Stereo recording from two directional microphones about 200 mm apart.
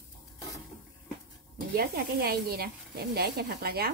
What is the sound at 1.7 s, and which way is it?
A woman's voice, 50° right (ahead or behind).